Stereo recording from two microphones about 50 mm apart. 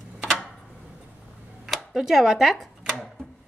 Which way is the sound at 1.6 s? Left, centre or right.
Centre.